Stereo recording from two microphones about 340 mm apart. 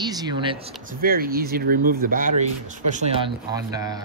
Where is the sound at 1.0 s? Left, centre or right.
Right.